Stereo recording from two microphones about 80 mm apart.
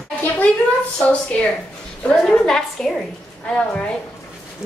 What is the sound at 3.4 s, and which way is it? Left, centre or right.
Speech, centre.